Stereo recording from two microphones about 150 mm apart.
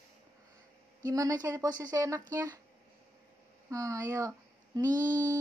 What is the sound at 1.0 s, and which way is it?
Music, 20° right (ahead or behind).